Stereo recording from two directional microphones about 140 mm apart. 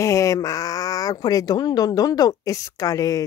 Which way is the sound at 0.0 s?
20° left (ahead or behind).